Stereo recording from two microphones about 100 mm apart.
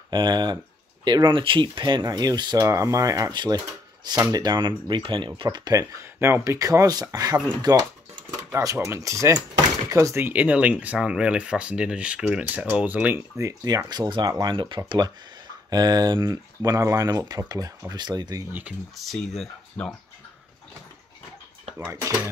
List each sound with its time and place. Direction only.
0.1 s speech: 50° right (ahead or behind)
2.6 s speech: 30° right (ahead or behind); by 5.3 s 55° right (ahead or behind)
5.4 s speech: 45° right (ahead or behind)
6.1 s speech: 25° right (ahead or behind); by 7.8 s 40° right (ahead or behind)
8.7 s speech: 25° right (ahead or behind)
13.4 s speech: 30° right (ahead or behind)
13.8 s speech: 45° right (ahead or behind)
16.6 s speech: 30° right (ahead or behind)
18.5 s speech: 15° right (ahead or behind)
18.9 s speech: 5° left (ahead or behind)